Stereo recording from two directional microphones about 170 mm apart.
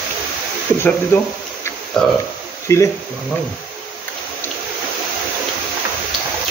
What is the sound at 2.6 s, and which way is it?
Speech, 15° left (ahead or behind).